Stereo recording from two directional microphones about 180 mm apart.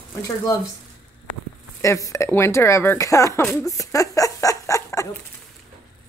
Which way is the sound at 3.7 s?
20° left (ahead or behind).